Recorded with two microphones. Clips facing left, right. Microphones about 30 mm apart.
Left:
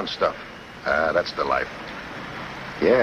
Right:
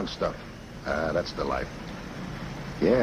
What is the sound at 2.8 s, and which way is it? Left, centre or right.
Speech, left.